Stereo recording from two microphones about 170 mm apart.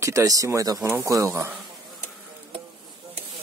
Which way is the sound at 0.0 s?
20° right (ahead or behind).